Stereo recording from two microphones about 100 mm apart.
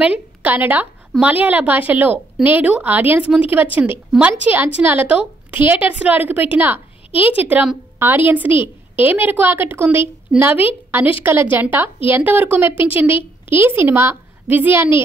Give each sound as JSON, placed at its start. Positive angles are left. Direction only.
{"t": 0.0, "sound": "a woman's voice", "side_deg": -15}